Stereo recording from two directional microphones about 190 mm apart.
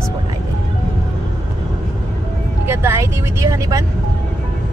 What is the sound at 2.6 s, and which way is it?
Speech, 15° right (ahead or behind).